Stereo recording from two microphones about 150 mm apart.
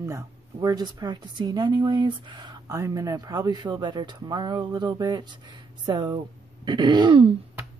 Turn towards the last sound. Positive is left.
turn(degrees=-30)  # may be behind; listen again after turning